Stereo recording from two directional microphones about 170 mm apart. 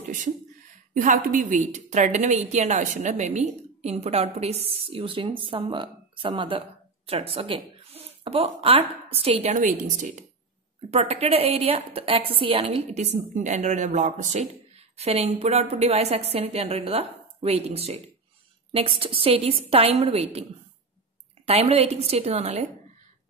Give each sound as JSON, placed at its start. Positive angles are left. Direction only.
{"t": 0.9, "sound": "a woman's voice", "side_deg": -50}
{"t": 9.5, "sound": "a woman's voice", "side_deg": -50}
{"t": 10.9, "sound": "a woman's voice", "side_deg": -40}
{"t": 21.5, "sound": "a woman's voice", "side_deg": -35}